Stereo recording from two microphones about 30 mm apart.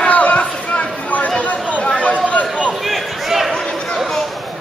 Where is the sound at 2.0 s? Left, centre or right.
Left.